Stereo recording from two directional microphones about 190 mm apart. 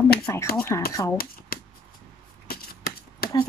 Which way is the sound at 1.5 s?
50° left (ahead or behind).